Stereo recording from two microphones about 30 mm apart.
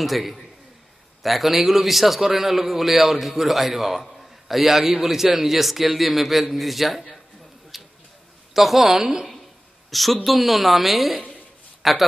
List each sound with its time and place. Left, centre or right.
0.0 s a man's voice: centre
7.7 s a sound: centre
8.5 s a man's voice: centre
9.0 s a woman's voice: centre
9.8 s a man's voice: centre